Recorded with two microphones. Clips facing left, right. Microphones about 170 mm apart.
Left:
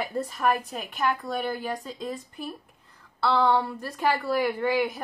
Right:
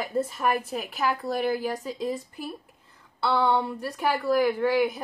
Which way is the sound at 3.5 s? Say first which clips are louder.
Even; 15° right (ahead or behind).